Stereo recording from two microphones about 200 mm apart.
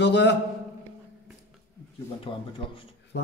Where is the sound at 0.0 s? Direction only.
60° left (ahead or behind).